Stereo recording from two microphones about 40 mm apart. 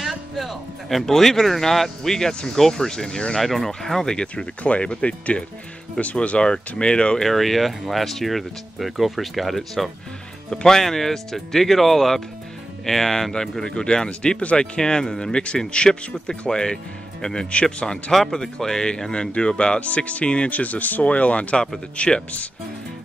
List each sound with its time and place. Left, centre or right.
0.4 s speech: centre
3.3 s speech: centre
4.6 s speech: left
7.2 s speech: centre; by 14.7 s left
14.8 s speech: centre